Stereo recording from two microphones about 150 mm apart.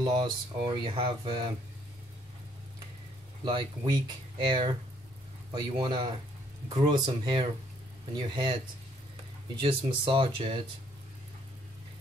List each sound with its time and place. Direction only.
0.0 s speech: 30° right (ahead or behind)
3.4 s speech: 30° right (ahead or behind)
9.6 s speech: 35° right (ahead or behind)